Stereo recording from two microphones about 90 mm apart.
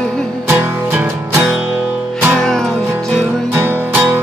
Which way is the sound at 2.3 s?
5° left (ahead or behind).